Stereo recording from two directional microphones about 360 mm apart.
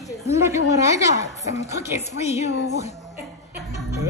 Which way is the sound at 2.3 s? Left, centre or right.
Left.